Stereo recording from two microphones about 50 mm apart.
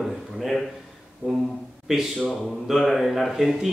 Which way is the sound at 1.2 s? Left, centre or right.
Right.